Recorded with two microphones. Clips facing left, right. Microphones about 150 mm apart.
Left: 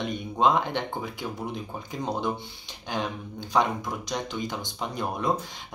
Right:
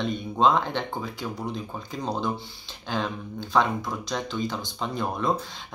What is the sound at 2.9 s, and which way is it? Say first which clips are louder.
Speech: right 2 dB; 15° left (ahead or behind).